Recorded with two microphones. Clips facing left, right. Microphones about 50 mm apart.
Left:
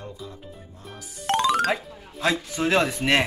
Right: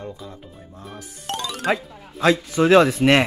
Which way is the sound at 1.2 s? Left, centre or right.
Left.